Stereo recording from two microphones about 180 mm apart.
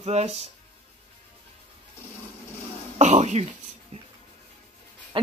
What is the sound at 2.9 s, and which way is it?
Speech, 35° right (ahead or behind).